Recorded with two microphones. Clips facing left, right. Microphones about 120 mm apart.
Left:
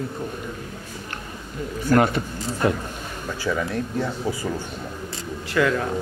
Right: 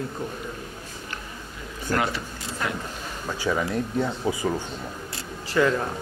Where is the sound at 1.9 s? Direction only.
45° left (ahead or behind).